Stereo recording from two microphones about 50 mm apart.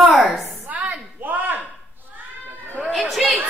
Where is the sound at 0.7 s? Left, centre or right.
Right.